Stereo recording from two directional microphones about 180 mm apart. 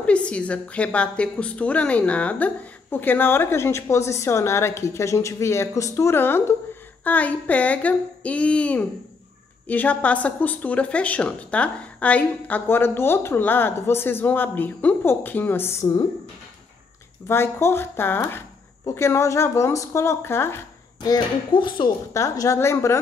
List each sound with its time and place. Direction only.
0.0 s a woman's voice: 5° left (ahead or behind)
17.3 s a woman's voice: 15° left (ahead or behind)